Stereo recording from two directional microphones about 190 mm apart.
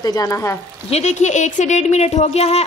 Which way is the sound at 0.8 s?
35° left (ahead or behind).